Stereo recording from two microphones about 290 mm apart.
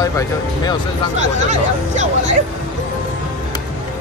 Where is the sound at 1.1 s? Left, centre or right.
Right.